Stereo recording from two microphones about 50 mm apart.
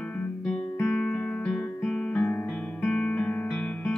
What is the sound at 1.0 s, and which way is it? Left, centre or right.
Music, centre.